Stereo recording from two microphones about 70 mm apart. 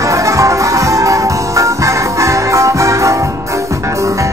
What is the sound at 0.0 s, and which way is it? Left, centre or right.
Music, right.